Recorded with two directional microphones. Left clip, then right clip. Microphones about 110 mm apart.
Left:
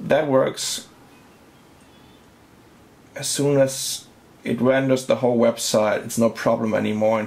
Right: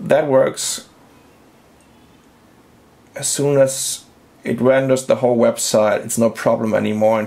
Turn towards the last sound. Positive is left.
turn(degrees=-40)  # may be behind; listen again after turning